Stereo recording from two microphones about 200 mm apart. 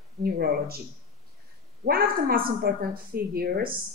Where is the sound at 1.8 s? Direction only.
50° right (ahead or behind).